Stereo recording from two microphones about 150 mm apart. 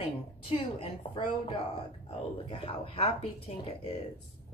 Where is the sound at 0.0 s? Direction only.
40° left (ahead or behind).